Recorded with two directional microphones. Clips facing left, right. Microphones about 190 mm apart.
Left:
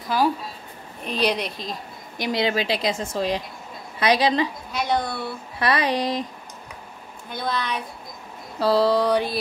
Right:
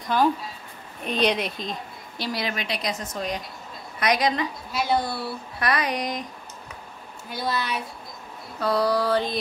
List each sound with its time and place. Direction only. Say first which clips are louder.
0.0 s speech: even; 5° left (ahead or behind)
2.1 s a woman's voice: left 5 dB; 15° left (ahead or behind)
2.4 s a woman's voice: left 9 dB; 30° left (ahead or behind)
4.7 s speech: even; 5° right (ahead or behind)
5.6 s speech: left 4 dB; 30° left (ahead or behind)
7.2 s speech: left 1 dB; 5° right (ahead or behind)
8.5 s a woman's voice: left 4 dB; 30° left (ahead or behind); by 9.4 s 10° left (ahead or behind)